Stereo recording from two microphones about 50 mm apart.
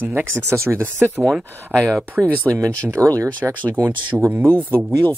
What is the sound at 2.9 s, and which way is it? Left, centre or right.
Speech, right.